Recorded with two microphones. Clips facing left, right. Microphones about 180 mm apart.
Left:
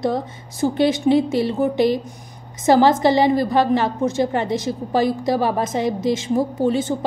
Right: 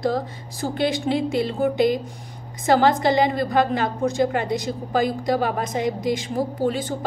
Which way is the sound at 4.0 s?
25° left (ahead or behind).